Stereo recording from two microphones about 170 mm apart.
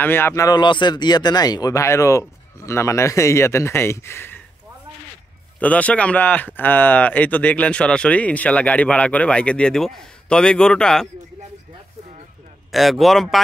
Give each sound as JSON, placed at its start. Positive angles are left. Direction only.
{"t": 0.0, "sound": "speech", "side_deg": 15}
{"t": 5.6, "sound": "speech", "side_deg": 10}
{"t": 12.7, "sound": "a man's voice", "side_deg": 0}